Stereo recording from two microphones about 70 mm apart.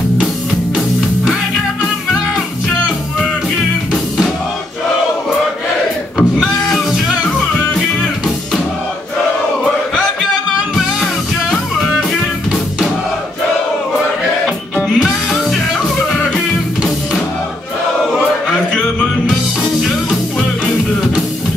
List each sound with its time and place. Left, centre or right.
0.7 s music: centre
6.1 s music: centre
14.4 s music: centre
18.5 s music: centre